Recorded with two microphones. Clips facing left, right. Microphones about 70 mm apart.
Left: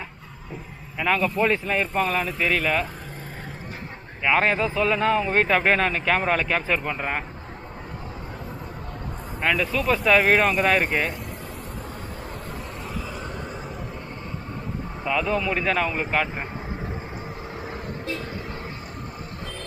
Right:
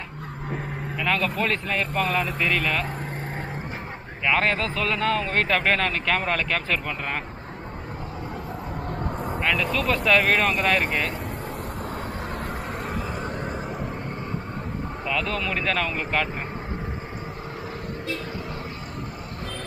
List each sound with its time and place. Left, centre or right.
0.9 s a man's voice: centre
4.2 s a man's voice: centre
9.3 s speech: centre
13.1 s vehicle: right
15.0 s a man's voice: centre